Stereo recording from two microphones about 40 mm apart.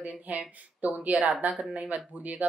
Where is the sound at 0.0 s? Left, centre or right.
Right.